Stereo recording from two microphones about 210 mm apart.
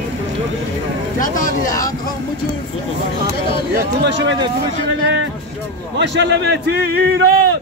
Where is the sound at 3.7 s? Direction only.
50° right (ahead or behind).